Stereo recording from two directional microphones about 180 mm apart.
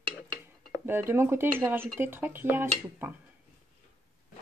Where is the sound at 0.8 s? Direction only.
15° right (ahead or behind).